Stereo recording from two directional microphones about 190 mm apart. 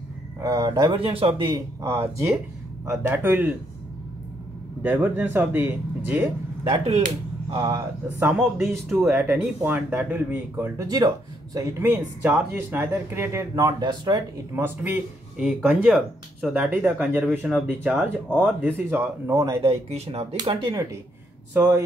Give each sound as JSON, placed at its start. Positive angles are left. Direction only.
{"t": 0.4, "sound": "speech", "side_deg": -15}
{"t": 1.8, "sound": "speech", "side_deg": -15}
{"t": 4.8, "sound": "speech", "side_deg": -10}
{"t": 7.5, "sound": "speech", "side_deg": -20}
{"t": 8.3, "sound": "speech", "side_deg": 0}
{"t": 14.5, "sound": "speech", "side_deg": -10}
{"t": 19.6, "sound": "speech", "side_deg": -30}
{"t": 20.3, "sound": "speech", "side_deg": -20}